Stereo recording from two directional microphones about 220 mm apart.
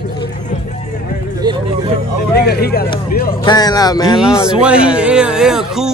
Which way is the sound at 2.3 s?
45° left (ahead or behind).